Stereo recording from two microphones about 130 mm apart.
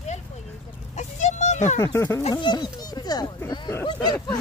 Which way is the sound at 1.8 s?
20° left (ahead or behind).